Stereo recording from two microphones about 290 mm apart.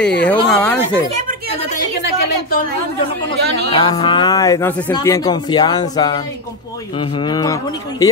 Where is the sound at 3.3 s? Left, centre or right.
Centre.